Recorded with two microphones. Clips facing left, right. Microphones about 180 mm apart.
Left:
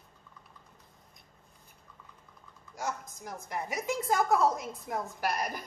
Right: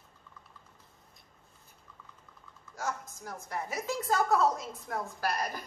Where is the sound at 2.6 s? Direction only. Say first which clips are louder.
Even; 15° left (ahead or behind).